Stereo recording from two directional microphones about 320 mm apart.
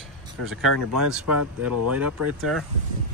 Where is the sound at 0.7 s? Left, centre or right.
Right.